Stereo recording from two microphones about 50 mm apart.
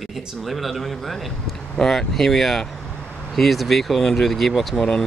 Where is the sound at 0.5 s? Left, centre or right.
Centre.